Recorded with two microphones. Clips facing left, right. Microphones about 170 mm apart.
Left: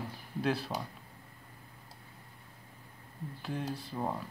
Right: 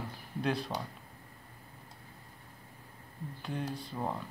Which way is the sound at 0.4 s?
5° left (ahead or behind).